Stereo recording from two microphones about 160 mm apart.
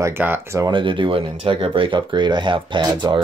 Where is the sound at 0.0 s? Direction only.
15° right (ahead or behind).